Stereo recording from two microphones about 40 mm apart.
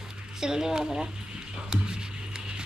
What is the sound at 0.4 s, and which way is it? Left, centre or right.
Speech, centre.